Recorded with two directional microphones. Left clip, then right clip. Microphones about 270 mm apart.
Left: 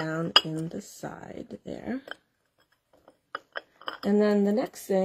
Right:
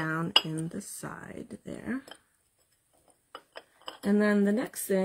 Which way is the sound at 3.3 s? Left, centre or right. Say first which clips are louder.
Left 9 dB; left.